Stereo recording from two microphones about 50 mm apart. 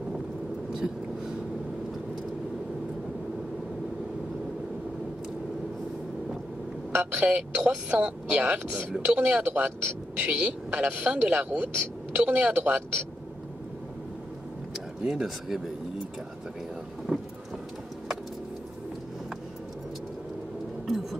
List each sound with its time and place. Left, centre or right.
6.9 s a man's voice: right
9.4 s a man's voice: right
10.1 s a man's voice: right
12.5 s a man's voice: right
15.0 s speech: centre
17.1 s thunder: right
20.8 s a sound: centre